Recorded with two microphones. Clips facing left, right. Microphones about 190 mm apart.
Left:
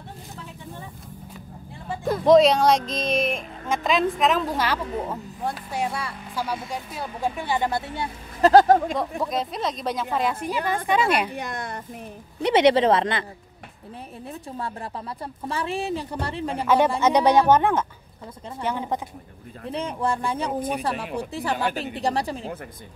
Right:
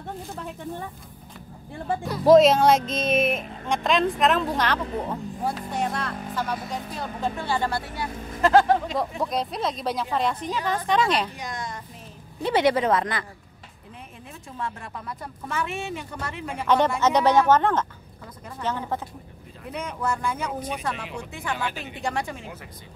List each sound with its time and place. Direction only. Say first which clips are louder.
2.2 s a woman's voice: right 1 dB; centre (ahead or behind); by 8.9 s 45° left (ahead or behind)
8.9 s a woman's voice: even; centre (ahead or behind)
11.3 s a woman's voice: left 3 dB; 60° left (ahead or behind)
12.4 s speech: left 4 dB; 20° left (ahead or behind)
14.6 s speech: right 1 dB; 30° left (ahead or behind)
16.6 s speech: left 1 dB; 10° left (ahead or behind)
19.7 s speech: left 3 dB; 30° left (ahead or behind)